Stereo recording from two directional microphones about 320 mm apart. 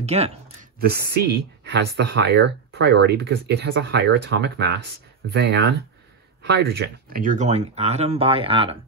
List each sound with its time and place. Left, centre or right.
0.0 s speech: centre